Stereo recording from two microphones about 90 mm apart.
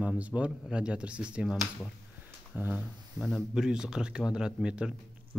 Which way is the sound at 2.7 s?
5° right (ahead or behind).